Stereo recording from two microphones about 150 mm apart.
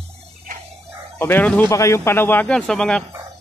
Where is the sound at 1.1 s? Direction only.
15° left (ahead or behind).